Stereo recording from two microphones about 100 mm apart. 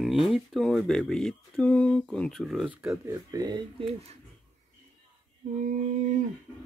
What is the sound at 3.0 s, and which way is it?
Speech, 30° right (ahead or behind).